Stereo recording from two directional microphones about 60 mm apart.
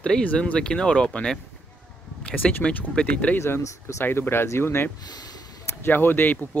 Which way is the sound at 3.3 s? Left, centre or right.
Left.